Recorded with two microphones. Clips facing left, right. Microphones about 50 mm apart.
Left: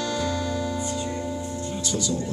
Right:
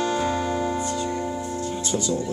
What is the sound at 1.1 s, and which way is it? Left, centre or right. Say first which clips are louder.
Music: right 3 dB; right.